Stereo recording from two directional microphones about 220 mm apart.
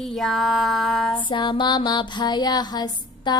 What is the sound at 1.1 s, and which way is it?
Female singing, 20° left (ahead or behind).